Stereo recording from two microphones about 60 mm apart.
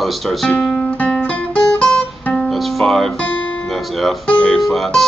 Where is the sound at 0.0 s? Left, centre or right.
Centre.